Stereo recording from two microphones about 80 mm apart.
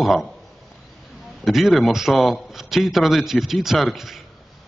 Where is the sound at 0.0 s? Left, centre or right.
Centre.